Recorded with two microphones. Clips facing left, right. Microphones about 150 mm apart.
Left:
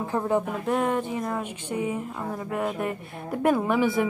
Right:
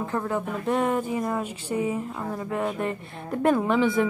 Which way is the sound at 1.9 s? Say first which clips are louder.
Right 1 dB; 5° left (ahead or behind).